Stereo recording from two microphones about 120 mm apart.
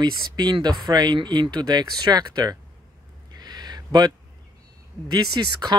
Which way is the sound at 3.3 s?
35° right (ahead or behind).